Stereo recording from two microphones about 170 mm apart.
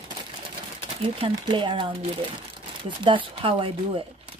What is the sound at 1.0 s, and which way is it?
Speech, 30° right (ahead or behind).